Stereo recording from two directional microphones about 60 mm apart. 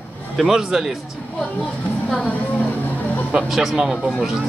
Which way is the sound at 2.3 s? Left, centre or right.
Left.